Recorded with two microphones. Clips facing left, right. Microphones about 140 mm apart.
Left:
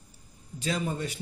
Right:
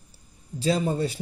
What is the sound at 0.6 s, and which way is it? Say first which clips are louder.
Speech: right 7 dB; 30° right (ahead or behind).